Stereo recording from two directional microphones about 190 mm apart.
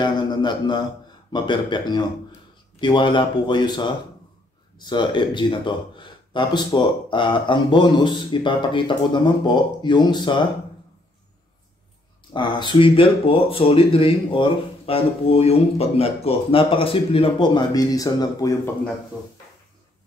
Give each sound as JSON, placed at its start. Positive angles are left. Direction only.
{"t": 0.0, "sound": "speech", "side_deg": 25}
{"t": 12.3, "sound": "speech", "side_deg": 25}